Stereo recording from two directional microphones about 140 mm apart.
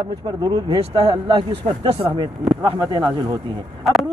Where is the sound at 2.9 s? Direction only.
35° right (ahead or behind).